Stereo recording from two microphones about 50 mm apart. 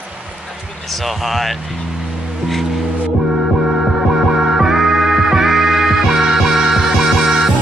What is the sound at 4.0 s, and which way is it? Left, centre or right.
Music, centre.